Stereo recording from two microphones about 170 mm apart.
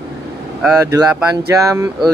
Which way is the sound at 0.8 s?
20° right (ahead or behind).